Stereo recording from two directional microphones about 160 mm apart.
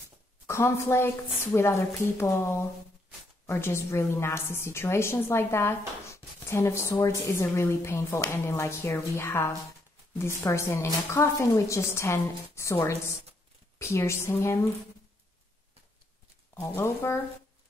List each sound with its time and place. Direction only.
0.5 s a woman's voice: 15° left (ahead or behind)
16.5 s a woman's voice: 15° left (ahead or behind)